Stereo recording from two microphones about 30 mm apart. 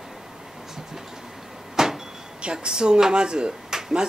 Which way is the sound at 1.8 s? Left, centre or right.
Centre.